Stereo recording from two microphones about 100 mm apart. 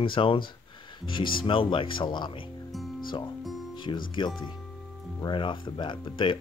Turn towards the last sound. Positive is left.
turn(degrees=55)  # may be behind; listen again after turning